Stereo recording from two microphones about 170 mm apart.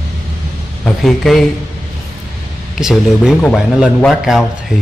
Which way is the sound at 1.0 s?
Centre (ahead or behind).